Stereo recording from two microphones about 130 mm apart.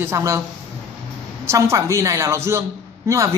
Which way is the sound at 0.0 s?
20° right (ahead or behind).